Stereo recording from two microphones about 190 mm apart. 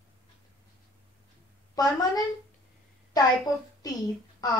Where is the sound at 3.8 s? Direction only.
20° left (ahead or behind).